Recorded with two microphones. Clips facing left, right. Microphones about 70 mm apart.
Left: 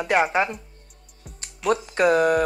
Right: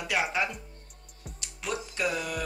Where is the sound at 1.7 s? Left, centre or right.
Left.